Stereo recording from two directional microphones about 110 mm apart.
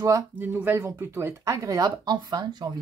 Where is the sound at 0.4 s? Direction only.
15° right (ahead or behind).